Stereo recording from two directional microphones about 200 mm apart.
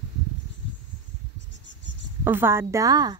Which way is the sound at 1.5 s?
65° left (ahead or behind).